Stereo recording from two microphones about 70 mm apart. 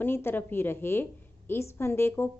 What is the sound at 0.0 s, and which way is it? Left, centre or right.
A woman's voice, left.